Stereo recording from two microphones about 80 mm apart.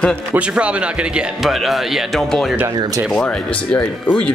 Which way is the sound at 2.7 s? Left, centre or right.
Right.